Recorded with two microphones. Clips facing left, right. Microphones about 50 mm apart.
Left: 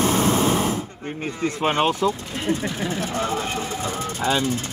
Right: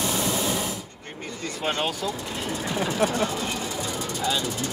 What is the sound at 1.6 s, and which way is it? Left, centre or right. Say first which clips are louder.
Speech: left 6 dB; left.